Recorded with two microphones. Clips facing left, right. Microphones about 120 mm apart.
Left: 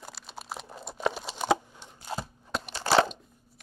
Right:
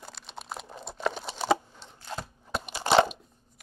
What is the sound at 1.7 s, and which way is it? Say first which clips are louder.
Chopping: left 2 dB; 15° left (ahead or behind).